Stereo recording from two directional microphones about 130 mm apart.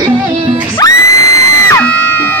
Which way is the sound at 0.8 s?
30° left (ahead or behind).